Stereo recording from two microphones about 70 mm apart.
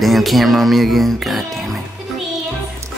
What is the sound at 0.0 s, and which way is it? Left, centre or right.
Speech, centre.